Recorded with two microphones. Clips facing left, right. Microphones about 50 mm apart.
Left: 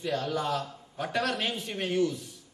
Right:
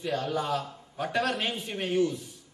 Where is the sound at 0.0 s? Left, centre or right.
Centre.